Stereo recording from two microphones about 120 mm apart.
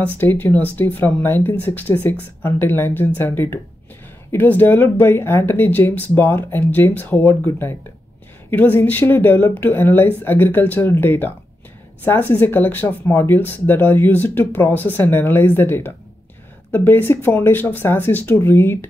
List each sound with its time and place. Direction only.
0.0 s speech: 15° left (ahead or behind)